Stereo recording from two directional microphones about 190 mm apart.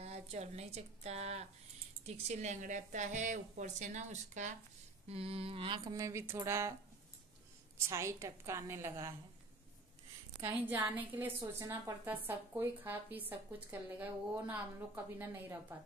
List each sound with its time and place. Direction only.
0.0 s a woman's voice: 35° right (ahead or behind)
5.9 s a woman's voice: 15° right (ahead or behind)
7.8 s a woman's voice: 15° right (ahead or behind)
10.6 s a woman's voice: 10° right (ahead or behind)
15.7 s a woman's voice: 10° right (ahead or behind)